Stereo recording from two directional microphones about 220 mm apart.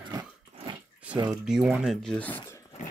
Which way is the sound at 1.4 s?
Centre (ahead or behind).